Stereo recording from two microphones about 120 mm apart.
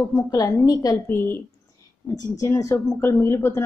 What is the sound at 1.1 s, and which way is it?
A woman's voice, 20° left (ahead or behind).